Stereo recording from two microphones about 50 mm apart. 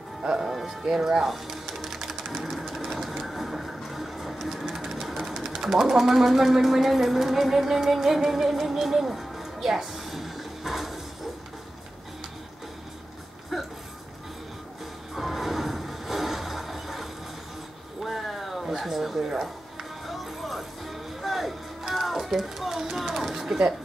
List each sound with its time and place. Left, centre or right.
0.4 s speech: centre
2.5 s sewing machine: centre
5.6 s speech: centre
13.5 s a sound: centre
15.1 s music: centre
18.0 s a sound: centre